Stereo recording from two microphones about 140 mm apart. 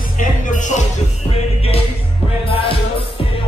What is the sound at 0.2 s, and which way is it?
Music, 65° left (ahead or behind).